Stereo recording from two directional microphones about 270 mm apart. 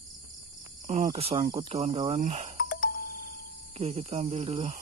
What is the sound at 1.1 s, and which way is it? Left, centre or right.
Speech, right.